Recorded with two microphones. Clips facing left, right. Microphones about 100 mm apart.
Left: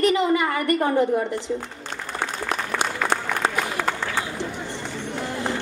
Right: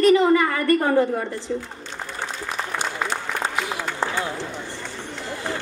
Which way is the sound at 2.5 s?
65° left (ahead or behind).